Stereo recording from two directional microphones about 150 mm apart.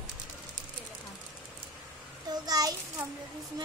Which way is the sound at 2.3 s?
25° right (ahead or behind).